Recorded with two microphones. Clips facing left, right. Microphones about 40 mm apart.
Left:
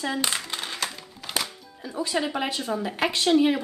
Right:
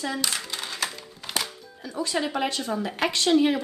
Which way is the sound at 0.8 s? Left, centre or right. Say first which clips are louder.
Right 1 dB; centre.